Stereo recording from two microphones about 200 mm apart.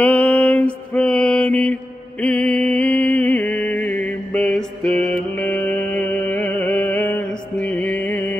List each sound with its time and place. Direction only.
0.0 s mantra: 5° left (ahead or behind)
4.8 s mantra: 30° right (ahead or behind)
5.1 s music: 5° left (ahead or behind)